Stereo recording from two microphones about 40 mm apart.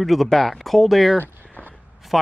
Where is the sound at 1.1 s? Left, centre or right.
Left.